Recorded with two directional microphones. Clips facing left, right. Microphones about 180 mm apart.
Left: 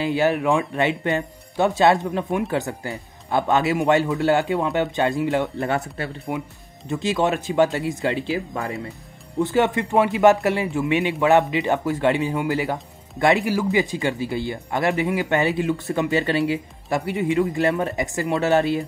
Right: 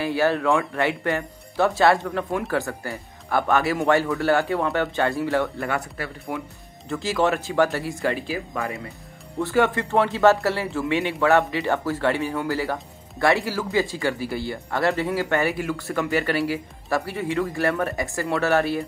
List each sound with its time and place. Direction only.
0.0 s speech: 20° left (ahead or behind)
9.4 s a man's voice: 20° left (ahead or behind)